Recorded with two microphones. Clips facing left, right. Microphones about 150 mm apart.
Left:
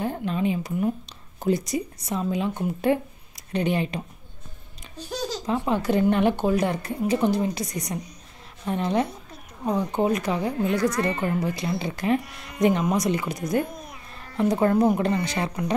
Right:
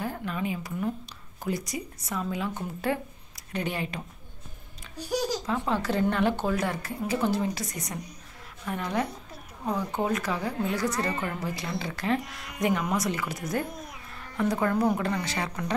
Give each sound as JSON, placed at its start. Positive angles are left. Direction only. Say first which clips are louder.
{"t": 0.0, "sound": "a woman's voice", "louder": "left 6 dB", "side_deg": 25}
{"t": 4.9, "sound": "babbling", "louder": "right 2 dB", "side_deg": -10}
{"t": 5.5, "sound": "a woman's voice", "louder": "left 8 dB", "side_deg": 15}